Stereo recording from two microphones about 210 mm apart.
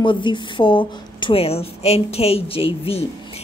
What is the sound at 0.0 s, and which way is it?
Speech, 25° left (ahead or behind).